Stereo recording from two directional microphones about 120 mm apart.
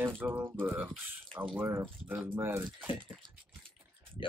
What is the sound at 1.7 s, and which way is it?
Speech, 20° right (ahead or behind).